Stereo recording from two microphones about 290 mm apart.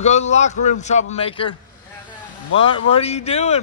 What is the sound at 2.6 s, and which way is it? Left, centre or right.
A man's voice, centre.